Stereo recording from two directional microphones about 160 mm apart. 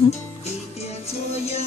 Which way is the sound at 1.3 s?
40° left (ahead or behind).